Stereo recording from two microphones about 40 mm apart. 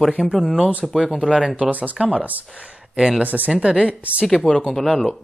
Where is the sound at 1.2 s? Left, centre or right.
Centre.